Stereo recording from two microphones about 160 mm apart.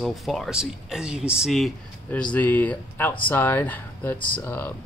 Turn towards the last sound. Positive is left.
turn(degrees=15)  # may be behind; listen again after turning